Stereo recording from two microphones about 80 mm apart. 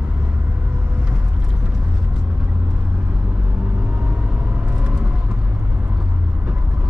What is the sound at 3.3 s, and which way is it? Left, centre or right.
Vehicle, centre.